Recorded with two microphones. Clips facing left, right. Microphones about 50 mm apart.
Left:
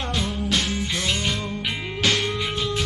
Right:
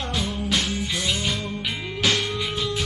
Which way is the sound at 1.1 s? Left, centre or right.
Centre.